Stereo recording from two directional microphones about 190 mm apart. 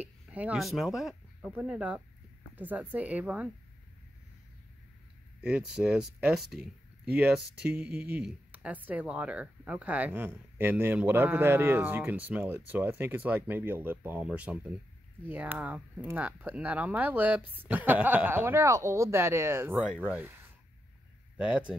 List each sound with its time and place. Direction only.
0.0 s speech: 10° right (ahead or behind)
5.4 s speech: 5° right (ahead or behind)
19.7 s speech: centre (ahead or behind)
20.0 s speech: 10° right (ahead or behind)
21.4 s speech: 5° right (ahead or behind)